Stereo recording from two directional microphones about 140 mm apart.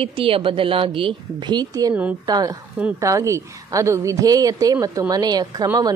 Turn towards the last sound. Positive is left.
turn(degrees=-25)  # may be behind; listen again after turning